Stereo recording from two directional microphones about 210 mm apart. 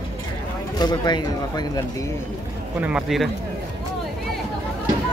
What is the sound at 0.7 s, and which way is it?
Speech, 20° left (ahead or behind).